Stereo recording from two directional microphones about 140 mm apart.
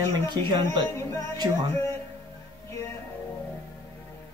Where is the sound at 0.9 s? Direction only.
20° left (ahead or behind).